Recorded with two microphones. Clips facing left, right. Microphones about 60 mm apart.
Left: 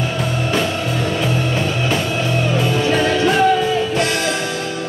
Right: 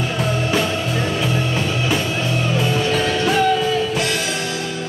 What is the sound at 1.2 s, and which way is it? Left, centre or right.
Music, centre.